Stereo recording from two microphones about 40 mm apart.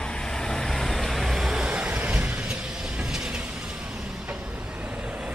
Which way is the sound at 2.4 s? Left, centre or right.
Right.